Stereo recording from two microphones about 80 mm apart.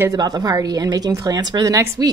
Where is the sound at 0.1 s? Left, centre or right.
Right.